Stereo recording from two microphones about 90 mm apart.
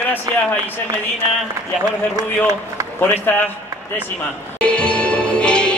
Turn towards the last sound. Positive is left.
turn(degrees=10)  # may be behind; listen again after turning